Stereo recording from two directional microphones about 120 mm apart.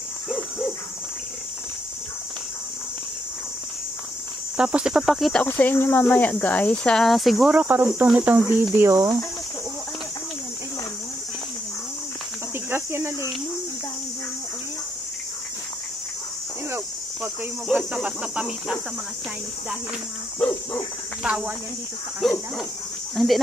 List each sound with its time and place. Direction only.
4.6 s speech: 5° right (ahead or behind)
5.4 s speech: 15° left (ahead or behind); by 7.5 s centre (ahead or behind)
7.5 s speech: 15° right (ahead or behind)
12.6 s speech: 20° right (ahead or behind)
17.6 s speech: 10° right (ahead or behind)
20.3 s speech: 15° left (ahead or behind)
21.2 s speech: 5° right (ahead or behind)